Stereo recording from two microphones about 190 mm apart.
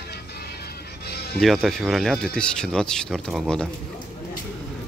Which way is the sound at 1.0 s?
60° left (ahead or behind).